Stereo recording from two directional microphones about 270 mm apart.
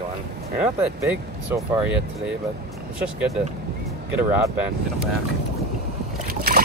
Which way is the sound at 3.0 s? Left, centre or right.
Centre.